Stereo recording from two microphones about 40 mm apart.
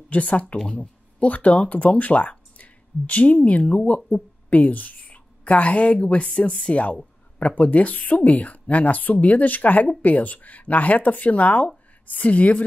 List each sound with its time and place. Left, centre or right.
0.1 s speech: left